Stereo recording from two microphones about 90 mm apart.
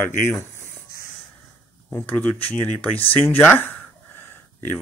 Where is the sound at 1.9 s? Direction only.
15° left (ahead or behind).